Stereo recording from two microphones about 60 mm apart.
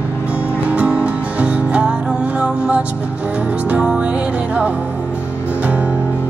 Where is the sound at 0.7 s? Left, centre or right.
Centre.